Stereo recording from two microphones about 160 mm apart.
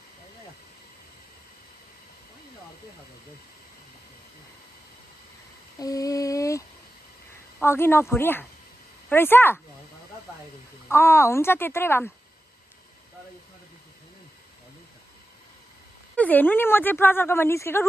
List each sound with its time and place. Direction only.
5.8 s a sound: 20° left (ahead or behind)
7.6 s speech: 15° left (ahead or behind)
10.9 s speech: 15° left (ahead or behind)
16.2 s speech: 10° left (ahead or behind)